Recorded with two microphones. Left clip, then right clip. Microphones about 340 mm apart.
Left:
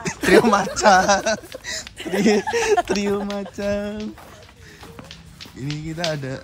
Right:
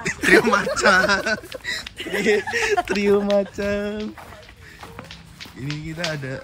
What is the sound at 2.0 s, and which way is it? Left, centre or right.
Speech, left.